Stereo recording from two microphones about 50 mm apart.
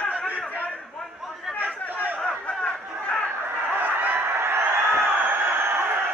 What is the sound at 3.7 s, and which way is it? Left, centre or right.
Snicker, right.